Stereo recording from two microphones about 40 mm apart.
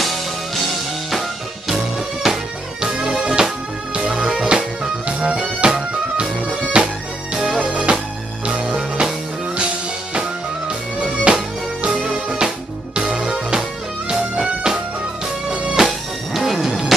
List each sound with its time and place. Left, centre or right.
2.2 s music: centre
5.0 s music: right
7.3 s music: centre
7.7 s music: right
11.0 s music: centre
15.8 s music: centre